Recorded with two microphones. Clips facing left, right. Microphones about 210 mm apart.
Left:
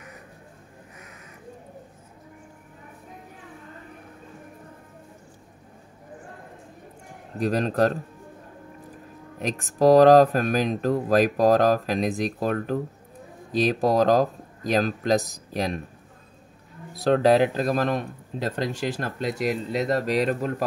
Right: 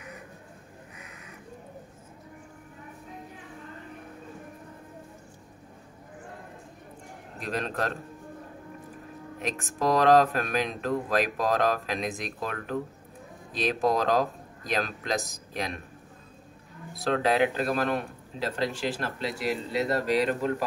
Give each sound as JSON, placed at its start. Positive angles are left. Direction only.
{"t": 7.3, "sound": "speech", "side_deg": 40}
{"t": 9.4, "sound": "speech", "side_deg": 40}
{"t": 16.9, "sound": "speech", "side_deg": 35}